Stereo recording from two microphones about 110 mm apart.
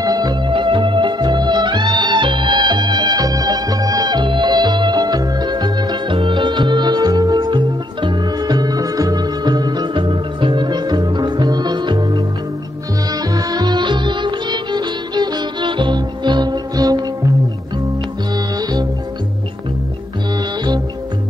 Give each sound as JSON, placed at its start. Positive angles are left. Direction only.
{"t": 0.0, "sound": "music", "side_deg": -35}
{"t": 18.3, "sound": "music", "side_deg": -35}